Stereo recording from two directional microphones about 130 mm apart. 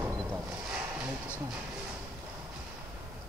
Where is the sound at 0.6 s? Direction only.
10° right (ahead or behind).